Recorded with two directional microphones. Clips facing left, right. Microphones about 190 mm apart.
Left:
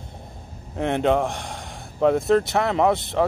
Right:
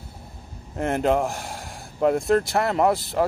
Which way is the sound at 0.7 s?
Centre (ahead or behind).